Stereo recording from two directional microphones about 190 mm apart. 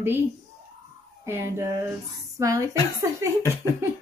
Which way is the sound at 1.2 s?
15° right (ahead or behind).